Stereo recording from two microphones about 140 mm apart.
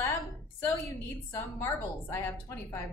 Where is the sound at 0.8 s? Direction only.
20° left (ahead or behind).